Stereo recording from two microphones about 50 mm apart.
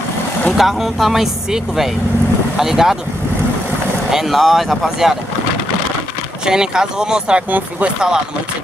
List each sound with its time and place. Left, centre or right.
0.6 s speech: centre
4.1 s speech: centre
6.4 s speech: centre